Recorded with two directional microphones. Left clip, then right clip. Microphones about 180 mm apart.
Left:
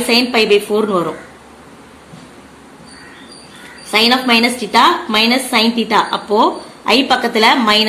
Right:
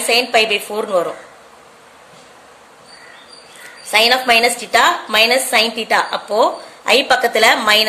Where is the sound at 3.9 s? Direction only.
30° right (ahead or behind).